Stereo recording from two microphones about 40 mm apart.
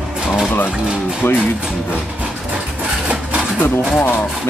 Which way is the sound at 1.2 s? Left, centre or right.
Left.